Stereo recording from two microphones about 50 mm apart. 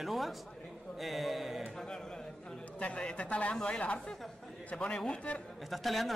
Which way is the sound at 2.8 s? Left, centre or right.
Left.